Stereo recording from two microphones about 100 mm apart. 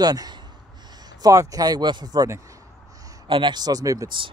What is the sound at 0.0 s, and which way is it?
Speech, 40° right (ahead or behind).